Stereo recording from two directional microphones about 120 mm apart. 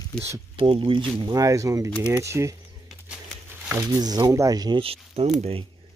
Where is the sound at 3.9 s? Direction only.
35° right (ahead or behind).